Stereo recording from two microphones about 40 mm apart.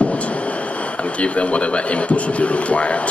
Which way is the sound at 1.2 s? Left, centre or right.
Left.